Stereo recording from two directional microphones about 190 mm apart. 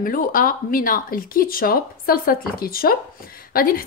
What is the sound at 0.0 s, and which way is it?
A woman's voice, 45° left (ahead or behind).